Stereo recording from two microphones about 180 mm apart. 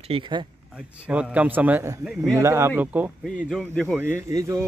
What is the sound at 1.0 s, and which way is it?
A man's voice, 5° right (ahead or behind).